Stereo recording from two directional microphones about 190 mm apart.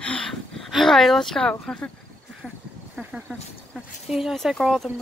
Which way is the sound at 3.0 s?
5° right (ahead or behind).